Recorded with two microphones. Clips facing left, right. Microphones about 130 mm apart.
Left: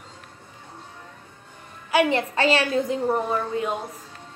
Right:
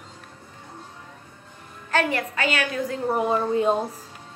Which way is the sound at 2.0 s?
25° left (ahead or behind).